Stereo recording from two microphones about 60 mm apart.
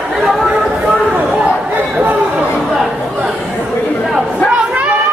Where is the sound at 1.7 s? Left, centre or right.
Right.